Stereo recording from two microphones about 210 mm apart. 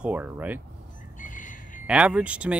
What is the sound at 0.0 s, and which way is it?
Speech, 10° right (ahead or behind).